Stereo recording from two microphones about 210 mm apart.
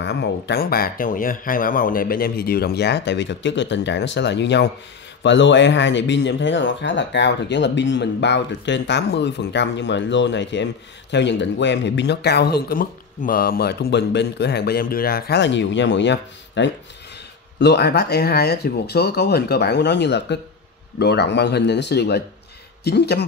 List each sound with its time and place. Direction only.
0.0 s speech: 55° left (ahead or behind)